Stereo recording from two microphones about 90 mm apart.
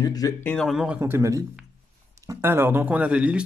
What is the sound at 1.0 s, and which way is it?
Speech, 35° right (ahead or behind).